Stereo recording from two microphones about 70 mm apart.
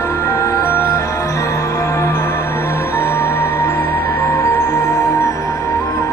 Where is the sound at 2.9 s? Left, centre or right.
Left.